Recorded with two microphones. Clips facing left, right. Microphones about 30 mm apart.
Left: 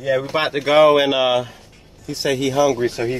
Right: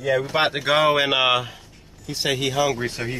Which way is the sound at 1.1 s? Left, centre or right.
Centre.